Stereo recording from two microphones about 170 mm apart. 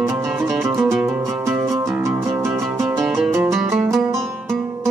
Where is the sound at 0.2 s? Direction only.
10° right (ahead or behind).